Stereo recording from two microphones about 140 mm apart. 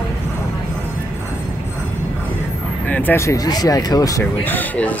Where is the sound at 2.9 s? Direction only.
15° left (ahead or behind).